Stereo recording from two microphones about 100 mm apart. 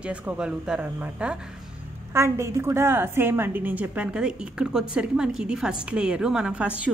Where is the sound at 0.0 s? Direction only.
15° right (ahead or behind).